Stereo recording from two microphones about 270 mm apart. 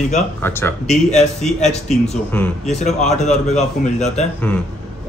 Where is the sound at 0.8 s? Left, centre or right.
Left.